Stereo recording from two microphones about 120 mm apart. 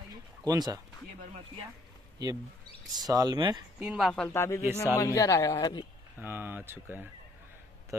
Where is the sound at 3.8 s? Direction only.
10° right (ahead or behind).